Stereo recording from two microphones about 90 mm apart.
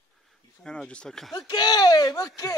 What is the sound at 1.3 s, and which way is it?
Speech, 50° left (ahead or behind).